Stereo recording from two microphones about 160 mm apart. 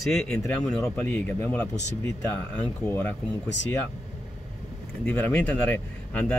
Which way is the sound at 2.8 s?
15° left (ahead or behind).